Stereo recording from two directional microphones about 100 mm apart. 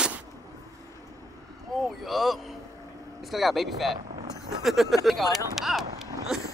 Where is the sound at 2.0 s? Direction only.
Centre (ahead or behind).